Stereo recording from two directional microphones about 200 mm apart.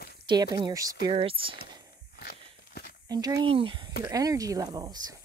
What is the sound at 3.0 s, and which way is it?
Speech, 20° right (ahead or behind).